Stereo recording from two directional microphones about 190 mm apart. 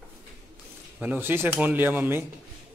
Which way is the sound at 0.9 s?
10° right (ahead or behind).